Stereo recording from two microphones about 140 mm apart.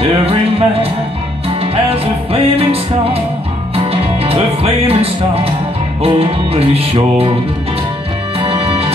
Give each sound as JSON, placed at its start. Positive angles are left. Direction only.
{"t": 0.0, "sound": "music", "side_deg": -45}
{"t": 2.5, "sound": "music", "side_deg": -45}
{"t": 8.4, "sound": "music", "side_deg": -40}